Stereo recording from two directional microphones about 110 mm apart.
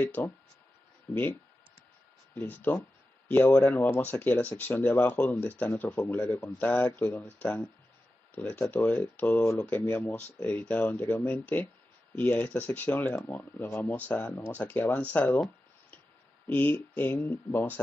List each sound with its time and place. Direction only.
0.0 s speech: 15° left (ahead or behind)
16.4 s speech: 15° left (ahead or behind)